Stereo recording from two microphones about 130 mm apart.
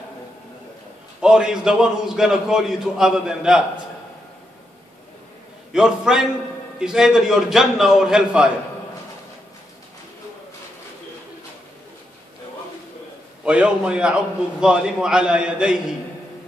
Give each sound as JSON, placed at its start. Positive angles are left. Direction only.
{"t": 1.2, "sound": "a man's voice", "side_deg": -5}
{"t": 5.7, "sound": "a man's voice", "side_deg": -5}
{"t": 13.4, "sound": "a man's voice", "side_deg": -10}